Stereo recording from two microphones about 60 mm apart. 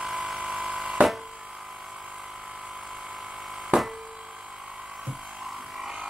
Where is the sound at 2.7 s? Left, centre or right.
Centre.